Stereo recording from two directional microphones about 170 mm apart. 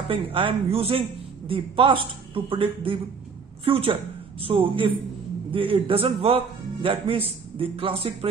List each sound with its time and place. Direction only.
0.1 s a man's voice: 30° right (ahead or behind)